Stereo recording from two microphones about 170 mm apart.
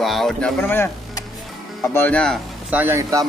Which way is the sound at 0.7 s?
15° left (ahead or behind).